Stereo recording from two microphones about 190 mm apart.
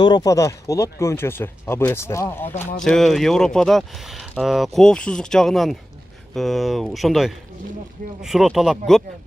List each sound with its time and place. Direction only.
0.0 s speech: 20° left (ahead or behind)
2.8 s speech: centre (ahead or behind)